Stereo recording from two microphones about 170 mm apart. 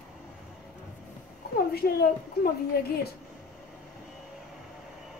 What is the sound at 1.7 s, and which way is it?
Speech, 65° left (ahead or behind).